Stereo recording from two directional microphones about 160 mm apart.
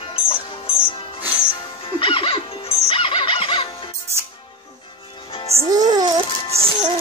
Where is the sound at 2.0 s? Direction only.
35° left (ahead or behind).